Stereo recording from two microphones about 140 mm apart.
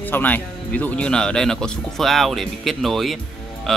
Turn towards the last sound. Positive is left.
turn(degrees=0)  # may be behind; listen again after turning